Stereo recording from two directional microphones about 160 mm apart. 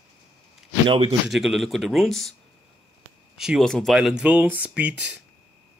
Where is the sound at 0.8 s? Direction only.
35° right (ahead or behind).